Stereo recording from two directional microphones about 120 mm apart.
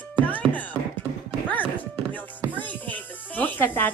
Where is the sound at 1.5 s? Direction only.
15° left (ahead or behind).